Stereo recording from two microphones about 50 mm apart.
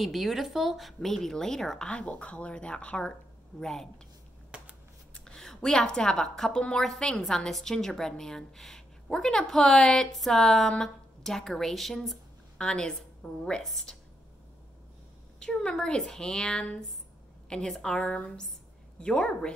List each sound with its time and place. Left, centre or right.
0.0 s speech: centre
1.9 s speech: left; by 3.9 s centre
5.1 s a woman's voice: centre
12.5 s a woman's voice: centre
15.3 s a woman's voice: centre